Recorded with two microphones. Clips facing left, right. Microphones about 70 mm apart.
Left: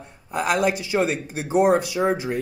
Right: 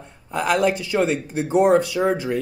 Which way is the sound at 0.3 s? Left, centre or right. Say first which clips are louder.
Right 2 dB; centre.